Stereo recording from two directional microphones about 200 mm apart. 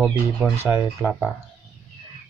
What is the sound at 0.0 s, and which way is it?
Speech, 10° right (ahead or behind).